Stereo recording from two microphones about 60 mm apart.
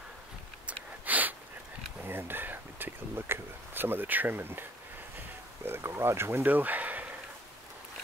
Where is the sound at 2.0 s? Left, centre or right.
Right.